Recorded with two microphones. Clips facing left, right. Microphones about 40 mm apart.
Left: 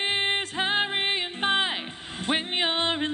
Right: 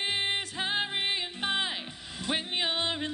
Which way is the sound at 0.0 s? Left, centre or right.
Left.